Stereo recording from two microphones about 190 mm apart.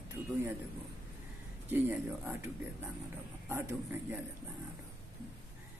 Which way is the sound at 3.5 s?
10° right (ahead or behind).